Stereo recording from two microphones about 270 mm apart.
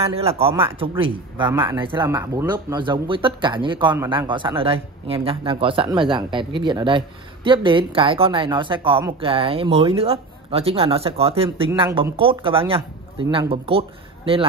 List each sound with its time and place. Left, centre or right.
0.0 s a woman's voice: right